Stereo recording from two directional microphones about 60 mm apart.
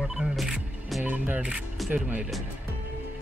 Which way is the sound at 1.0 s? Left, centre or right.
Right.